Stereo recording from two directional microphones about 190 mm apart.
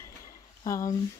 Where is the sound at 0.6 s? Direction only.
20° left (ahead or behind).